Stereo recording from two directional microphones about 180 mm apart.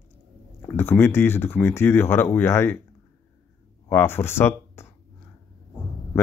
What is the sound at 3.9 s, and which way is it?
Speech, 15° left (ahead or behind).